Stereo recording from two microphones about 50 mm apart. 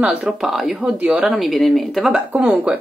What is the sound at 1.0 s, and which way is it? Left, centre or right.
Speech, right.